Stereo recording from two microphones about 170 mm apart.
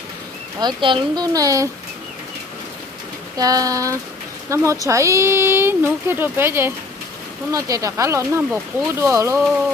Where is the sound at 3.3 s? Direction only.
20° right (ahead or behind).